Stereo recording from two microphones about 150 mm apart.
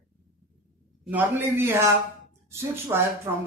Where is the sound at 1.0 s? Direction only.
15° right (ahead or behind).